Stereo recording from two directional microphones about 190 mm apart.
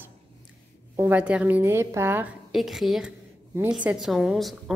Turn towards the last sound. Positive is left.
turn(degrees=0)  # may be behind; listen again after turning